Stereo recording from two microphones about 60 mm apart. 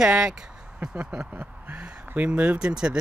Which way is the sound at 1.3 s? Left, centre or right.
Right.